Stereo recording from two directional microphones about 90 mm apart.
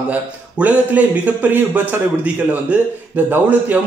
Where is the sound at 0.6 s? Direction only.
15° right (ahead or behind).